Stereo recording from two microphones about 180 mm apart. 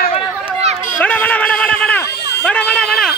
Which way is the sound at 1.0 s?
10° left (ahead or behind).